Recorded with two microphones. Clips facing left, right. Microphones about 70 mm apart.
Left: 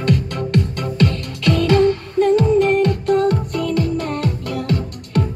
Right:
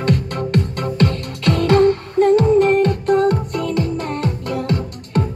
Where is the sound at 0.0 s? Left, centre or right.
Right.